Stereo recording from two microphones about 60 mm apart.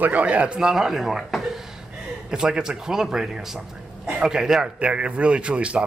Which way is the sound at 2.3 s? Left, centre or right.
Centre.